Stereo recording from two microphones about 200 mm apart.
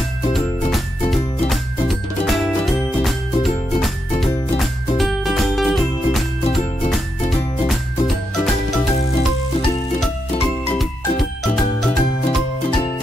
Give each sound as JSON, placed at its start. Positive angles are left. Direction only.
{"t": 0.3, "sound": "music", "side_deg": 0}
{"t": 10.8, "sound": "music", "side_deg": 0}